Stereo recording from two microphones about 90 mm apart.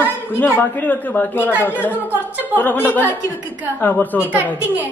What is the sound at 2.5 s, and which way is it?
A man's voice, 20° left (ahead or behind).